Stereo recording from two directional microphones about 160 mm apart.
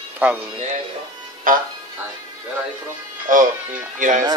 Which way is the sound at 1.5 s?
60° right (ahead or behind).